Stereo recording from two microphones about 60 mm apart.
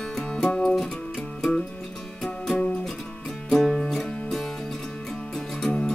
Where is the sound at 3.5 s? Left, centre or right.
Centre.